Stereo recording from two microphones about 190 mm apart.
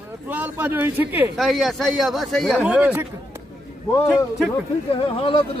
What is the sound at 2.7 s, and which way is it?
Speech, 10° right (ahead or behind).